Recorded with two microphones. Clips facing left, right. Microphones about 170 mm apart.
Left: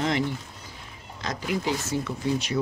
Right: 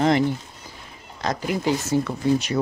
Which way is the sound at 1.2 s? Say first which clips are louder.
Right 4 dB; 45° right (ahead or behind).